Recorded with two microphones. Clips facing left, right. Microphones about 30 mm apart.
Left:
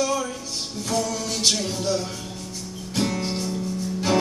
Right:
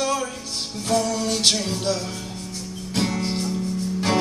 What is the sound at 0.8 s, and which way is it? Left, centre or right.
Music, right.